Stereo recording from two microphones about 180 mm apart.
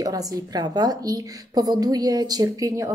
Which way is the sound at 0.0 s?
20° right (ahead or behind).